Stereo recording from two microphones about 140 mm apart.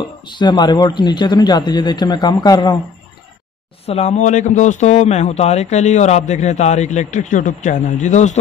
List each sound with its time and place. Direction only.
0.3 s speech: 30° left (ahead or behind)
3.8 s a man's voice: 50° left (ahead or behind)